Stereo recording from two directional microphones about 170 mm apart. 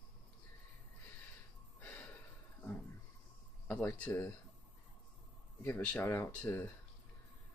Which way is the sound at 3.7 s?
15° left (ahead or behind).